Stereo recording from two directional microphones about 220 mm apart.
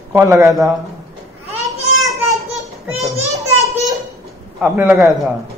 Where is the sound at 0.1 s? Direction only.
15° right (ahead or behind).